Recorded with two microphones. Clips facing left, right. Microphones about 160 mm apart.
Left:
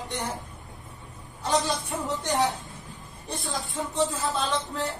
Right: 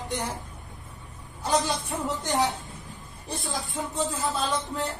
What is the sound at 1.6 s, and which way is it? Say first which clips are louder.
Speech: even; centre (ahead or behind).